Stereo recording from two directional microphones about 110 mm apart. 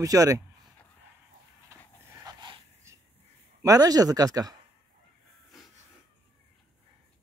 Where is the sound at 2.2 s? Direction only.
45° right (ahead or behind).